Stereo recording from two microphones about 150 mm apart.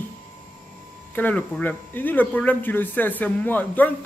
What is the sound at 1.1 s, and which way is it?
Speech, 10° left (ahead or behind).